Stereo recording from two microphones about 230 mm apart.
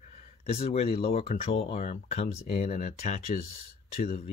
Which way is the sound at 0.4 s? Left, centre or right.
Left.